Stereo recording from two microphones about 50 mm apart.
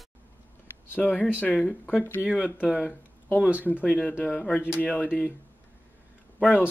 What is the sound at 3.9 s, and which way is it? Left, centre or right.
Speech, left.